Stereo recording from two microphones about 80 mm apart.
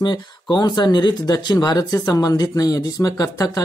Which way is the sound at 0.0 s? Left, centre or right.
Left.